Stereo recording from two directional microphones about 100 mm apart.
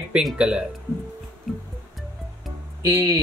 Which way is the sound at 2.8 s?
30° right (ahead or behind).